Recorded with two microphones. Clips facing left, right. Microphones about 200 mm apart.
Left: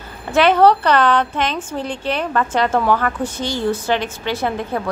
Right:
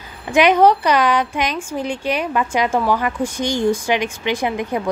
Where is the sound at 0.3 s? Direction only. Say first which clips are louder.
Even; 15° right (ahead or behind).